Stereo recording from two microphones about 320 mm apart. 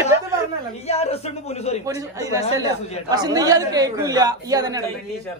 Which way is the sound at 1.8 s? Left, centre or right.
Centre.